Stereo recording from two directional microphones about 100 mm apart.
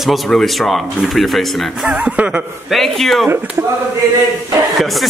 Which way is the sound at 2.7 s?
Centre (ahead or behind).